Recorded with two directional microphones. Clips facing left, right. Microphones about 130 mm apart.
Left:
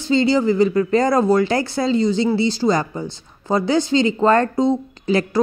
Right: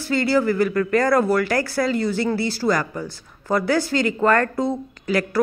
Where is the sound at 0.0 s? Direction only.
20° left (ahead or behind).